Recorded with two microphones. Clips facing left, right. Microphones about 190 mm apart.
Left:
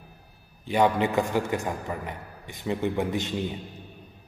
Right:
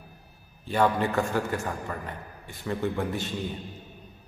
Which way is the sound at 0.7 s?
15° left (ahead or behind).